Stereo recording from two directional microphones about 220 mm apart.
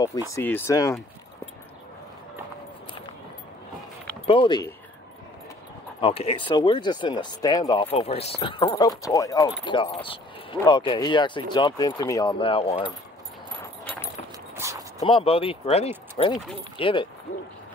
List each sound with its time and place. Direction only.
0.4 s speech: 10° left (ahead or behind)
4.3 s speech: 20° left (ahead or behind)
5.9 s speech: 25° left (ahead or behind)
14.6 s a sound: 15° right (ahead or behind)
15.0 s speech: 25° left (ahead or behind)